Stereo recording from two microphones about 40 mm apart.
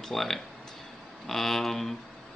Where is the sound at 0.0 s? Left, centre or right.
Centre.